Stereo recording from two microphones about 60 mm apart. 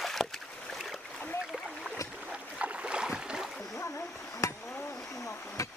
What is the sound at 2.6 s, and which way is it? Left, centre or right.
Boat, centre.